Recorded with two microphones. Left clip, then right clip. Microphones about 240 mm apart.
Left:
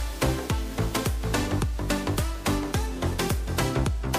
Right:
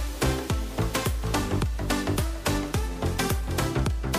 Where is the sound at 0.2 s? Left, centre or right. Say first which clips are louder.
Even; centre.